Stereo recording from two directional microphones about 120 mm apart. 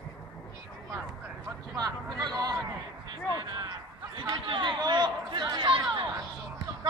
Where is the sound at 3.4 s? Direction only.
35° right (ahead or behind).